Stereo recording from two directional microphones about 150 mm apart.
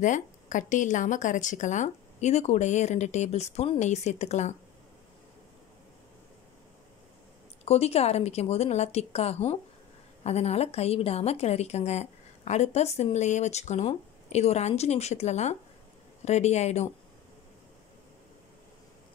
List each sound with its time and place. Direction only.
0.0 s a woman's voice: 55° left (ahead or behind)
7.6 s a woman's voice: 45° left (ahead or behind)